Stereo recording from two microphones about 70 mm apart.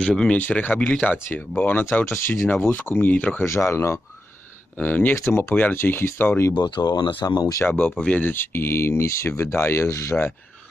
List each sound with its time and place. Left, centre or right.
0.0 s speech: centre
0.4 s speech: left
3.4 s speech: left
4.7 s speech: left
6.6 s speech: left
7.6 s speech: left
7.9 s speech: centre
8.2 s speech: left